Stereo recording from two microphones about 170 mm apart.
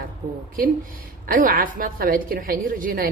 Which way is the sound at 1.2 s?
55° right (ahead or behind).